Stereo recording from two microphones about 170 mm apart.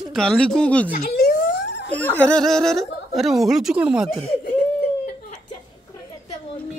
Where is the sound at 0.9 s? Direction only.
65° left (ahead or behind).